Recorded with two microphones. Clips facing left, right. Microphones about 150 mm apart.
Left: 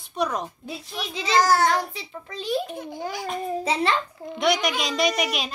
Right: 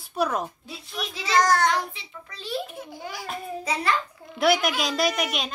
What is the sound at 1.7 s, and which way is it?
Speech, 40° left (ahead or behind).